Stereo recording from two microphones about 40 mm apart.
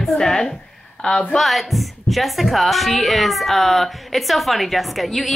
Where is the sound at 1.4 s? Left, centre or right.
Centre.